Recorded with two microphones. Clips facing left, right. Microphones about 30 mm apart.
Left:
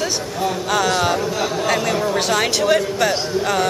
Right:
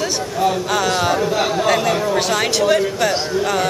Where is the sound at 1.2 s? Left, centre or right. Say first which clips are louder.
Right 3 dB; centre.